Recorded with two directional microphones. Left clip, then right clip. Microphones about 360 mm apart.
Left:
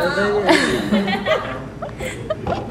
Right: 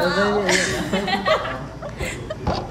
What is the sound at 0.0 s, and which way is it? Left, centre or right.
Speech, right.